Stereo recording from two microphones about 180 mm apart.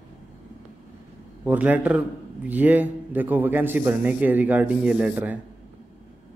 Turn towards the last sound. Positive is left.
turn(degrees=-10)  # may be behind; listen again after turning